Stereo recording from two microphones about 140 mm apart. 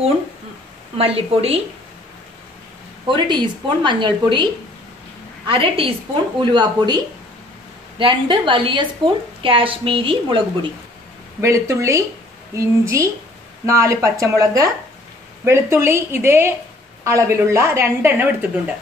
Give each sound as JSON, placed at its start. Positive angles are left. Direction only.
{"t": 0.9, "sound": "a woman's voice", "side_deg": -45}
{"t": 3.1, "sound": "a woman's voice", "side_deg": -30}
{"t": 5.5, "sound": "a woman's voice", "side_deg": -40}
{"t": 8.0, "sound": "a woman's voice", "side_deg": -35}
{"t": 11.4, "sound": "a woman's voice", "side_deg": -20}